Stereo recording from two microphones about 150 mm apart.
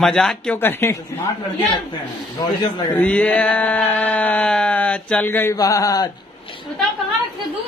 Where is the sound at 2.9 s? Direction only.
10° left (ahead or behind).